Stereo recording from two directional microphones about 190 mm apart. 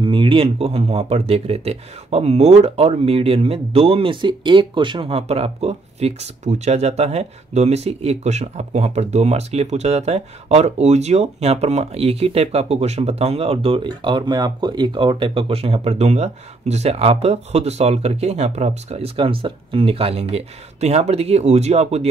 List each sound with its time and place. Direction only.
0.0 s speech: 25° right (ahead or behind)